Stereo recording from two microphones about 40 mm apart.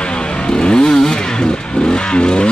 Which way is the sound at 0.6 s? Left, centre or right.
Left.